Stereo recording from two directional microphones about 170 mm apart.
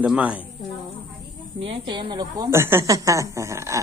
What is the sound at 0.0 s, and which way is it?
Speech, 10° right (ahead or behind).